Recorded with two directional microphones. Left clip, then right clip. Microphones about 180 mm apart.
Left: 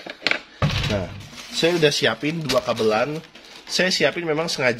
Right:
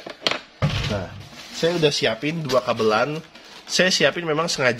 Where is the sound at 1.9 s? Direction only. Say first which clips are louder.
Left 1 dB; 20° left (ahead or behind).